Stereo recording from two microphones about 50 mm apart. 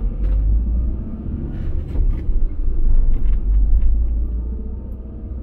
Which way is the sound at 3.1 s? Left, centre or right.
Right.